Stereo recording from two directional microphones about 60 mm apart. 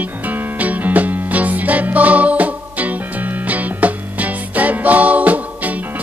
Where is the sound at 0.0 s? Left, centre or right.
Right.